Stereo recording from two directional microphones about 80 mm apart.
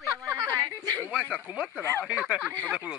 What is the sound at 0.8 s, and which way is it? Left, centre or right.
Speech, right.